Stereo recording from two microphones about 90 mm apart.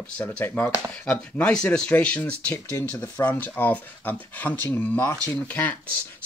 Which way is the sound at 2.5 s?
35° left (ahead or behind).